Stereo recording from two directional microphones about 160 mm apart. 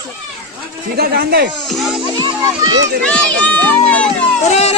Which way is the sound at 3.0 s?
5° left (ahead or behind).